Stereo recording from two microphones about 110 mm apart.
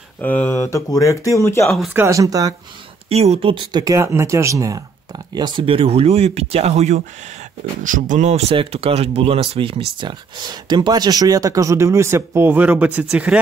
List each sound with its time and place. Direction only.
0.2 s speech: 15° left (ahead or behind)
2.0 s speech: 30° right (ahead or behind)
3.1 s speech: 65° right (ahead or behind)
3.7 s speech: 30° right (ahead or behind)
5.3 s speech: 40° right (ahead or behind); by 7.0 s 75° right (ahead or behind)
8.2 s speech: 80° right; by 13.4 s 10° right (ahead or behind)